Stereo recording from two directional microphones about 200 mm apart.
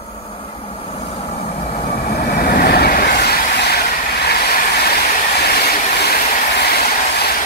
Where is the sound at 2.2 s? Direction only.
50° left (ahead or behind).